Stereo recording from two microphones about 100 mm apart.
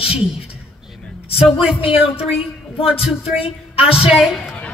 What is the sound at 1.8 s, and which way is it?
Speech, 75° left (ahead or behind).